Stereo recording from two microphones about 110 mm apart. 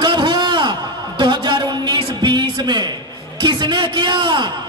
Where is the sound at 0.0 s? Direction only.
45° right (ahead or behind).